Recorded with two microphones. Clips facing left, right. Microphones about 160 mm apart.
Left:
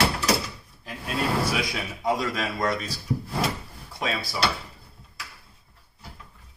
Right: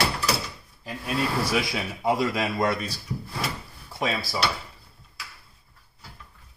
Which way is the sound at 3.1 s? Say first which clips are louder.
Left 8 dB; 55° left (ahead or behind).